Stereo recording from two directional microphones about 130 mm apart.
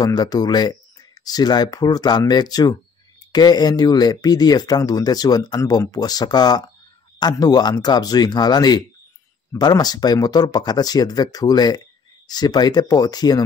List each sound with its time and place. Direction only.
0.0 s speech: 30° left (ahead or behind)